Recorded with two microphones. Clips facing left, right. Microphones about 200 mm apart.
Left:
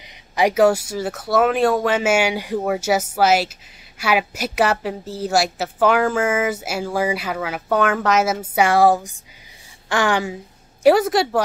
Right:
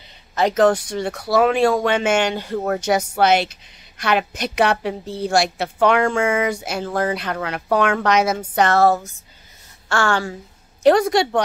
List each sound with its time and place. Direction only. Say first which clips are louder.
0.4 s a woman's voice: left 1 dB; 10° left (ahead or behind)
10.8 s a woman's voice: even; 5° left (ahead or behind)